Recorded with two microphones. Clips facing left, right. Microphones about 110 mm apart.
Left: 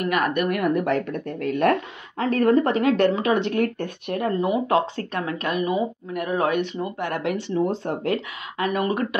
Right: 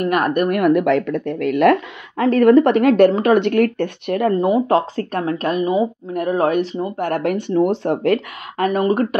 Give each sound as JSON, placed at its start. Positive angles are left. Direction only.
{"t": 0.0, "sound": "a woman's voice", "side_deg": -45}
{"t": 0.6, "sound": "a woman's voice", "side_deg": -75}
{"t": 4.4, "sound": "a woman's voice", "side_deg": -40}
{"t": 7.7, "sound": "speech", "side_deg": -80}
{"t": 8.5, "sound": "a woman's voice", "side_deg": -40}